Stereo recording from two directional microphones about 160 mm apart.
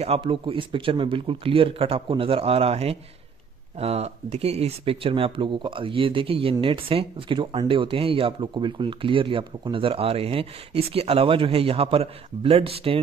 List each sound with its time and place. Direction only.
0.0 s speech: 35° right (ahead or behind)